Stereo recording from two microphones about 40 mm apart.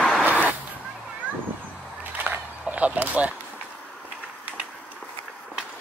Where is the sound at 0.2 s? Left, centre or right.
Right.